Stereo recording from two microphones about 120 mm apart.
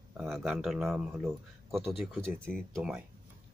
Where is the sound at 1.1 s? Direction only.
20° right (ahead or behind).